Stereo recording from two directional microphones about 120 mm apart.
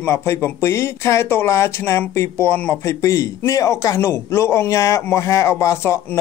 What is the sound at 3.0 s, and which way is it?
Speech, 25° left (ahead or behind).